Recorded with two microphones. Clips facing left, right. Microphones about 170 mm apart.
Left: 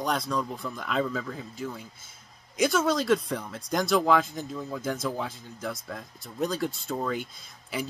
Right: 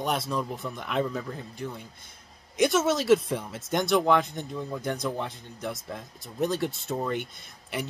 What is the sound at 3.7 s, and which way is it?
Speech, centre (ahead or behind).